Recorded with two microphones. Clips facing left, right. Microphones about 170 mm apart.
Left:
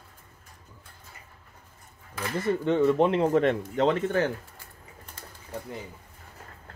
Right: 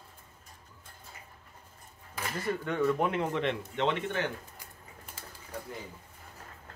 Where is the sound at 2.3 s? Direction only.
20° left (ahead or behind).